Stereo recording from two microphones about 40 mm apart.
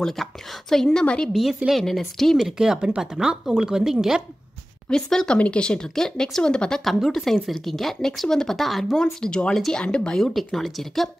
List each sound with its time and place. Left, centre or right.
0.0 s speech: centre
1.3 s a woman's voice: centre
1.8 s speech: centre
2.3 s speech: centre
5.1 s speech: centre
5.9 s speech: centre
6.8 s a woman's voice: centre
7.1 s speech: centre
8.9 s speech: centre
10.3 s speech: centre